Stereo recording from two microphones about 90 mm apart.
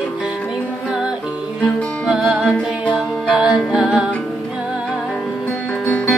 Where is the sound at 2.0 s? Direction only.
5° right (ahead or behind).